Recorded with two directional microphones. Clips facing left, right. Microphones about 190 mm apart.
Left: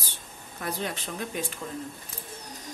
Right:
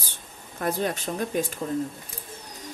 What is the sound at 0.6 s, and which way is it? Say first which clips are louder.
Speech: right 6 dB; 45° right (ahead or behind).